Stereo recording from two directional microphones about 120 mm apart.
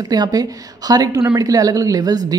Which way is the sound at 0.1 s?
35° right (ahead or behind).